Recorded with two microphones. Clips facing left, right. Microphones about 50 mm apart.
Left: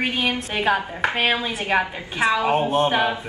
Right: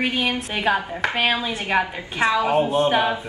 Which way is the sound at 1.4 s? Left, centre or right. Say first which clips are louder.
Even; centre.